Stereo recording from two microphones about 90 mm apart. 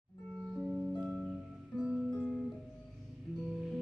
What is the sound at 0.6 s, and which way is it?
Music, 20° right (ahead or behind).